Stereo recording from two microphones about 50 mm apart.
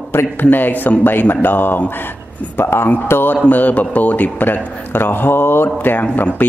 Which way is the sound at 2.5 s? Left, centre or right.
Left.